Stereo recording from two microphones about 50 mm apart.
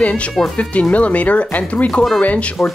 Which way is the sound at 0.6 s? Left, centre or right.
Left.